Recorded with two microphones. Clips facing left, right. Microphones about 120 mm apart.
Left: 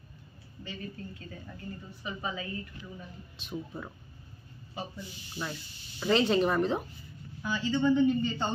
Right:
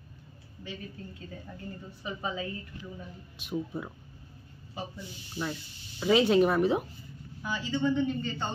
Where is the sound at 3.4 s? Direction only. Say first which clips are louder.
Right 5 dB; 10° right (ahead or behind).